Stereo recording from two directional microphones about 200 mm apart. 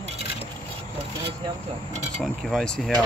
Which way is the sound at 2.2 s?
Centre (ahead or behind).